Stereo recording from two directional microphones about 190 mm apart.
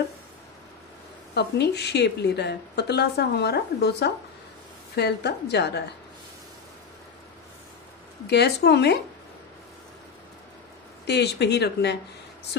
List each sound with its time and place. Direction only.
1.3 s a woman's voice: 60° left (ahead or behind)
8.3 s a woman's voice: 60° left (ahead or behind)
11.1 s a woman's voice: 60° left (ahead or behind)